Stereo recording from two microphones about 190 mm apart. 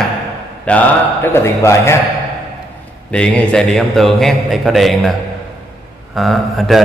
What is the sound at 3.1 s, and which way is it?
A man's voice, 5° left (ahead or behind).